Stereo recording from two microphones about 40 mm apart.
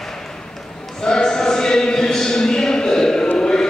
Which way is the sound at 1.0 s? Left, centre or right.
Centre.